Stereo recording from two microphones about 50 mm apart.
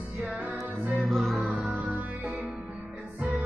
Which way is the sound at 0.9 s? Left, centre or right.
Centre.